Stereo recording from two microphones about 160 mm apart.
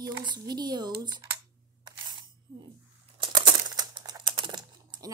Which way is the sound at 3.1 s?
30° right (ahead or behind).